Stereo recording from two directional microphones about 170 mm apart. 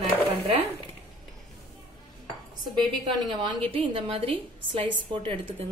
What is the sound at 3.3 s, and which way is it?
A woman's voice, 30° right (ahead or behind).